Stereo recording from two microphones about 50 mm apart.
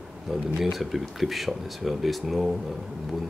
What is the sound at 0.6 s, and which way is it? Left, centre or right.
Speech, centre.